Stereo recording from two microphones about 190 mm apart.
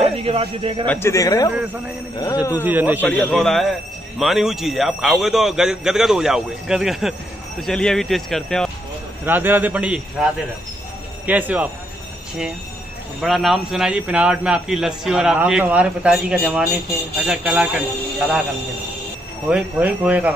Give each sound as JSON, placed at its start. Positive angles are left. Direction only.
{"t": 0.0, "sound": "speech", "side_deg": -30}
{"t": 0.8, "sound": "speech", "side_deg": 15}
{"t": 1.5, "sound": "a man's voice", "side_deg": -5}
{"t": 3.1, "sound": "a man's voice", "side_deg": 5}
{"t": 9.2, "sound": "a man's voice", "side_deg": -10}
{"t": 13.2, "sound": "a man's voice", "side_deg": 0}
{"t": 19.5, "sound": "a man's voice", "side_deg": -10}